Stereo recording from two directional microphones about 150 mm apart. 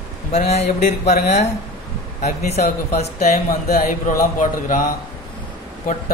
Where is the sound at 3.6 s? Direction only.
80° left; by 4.8 s 65° left (ahead or behind).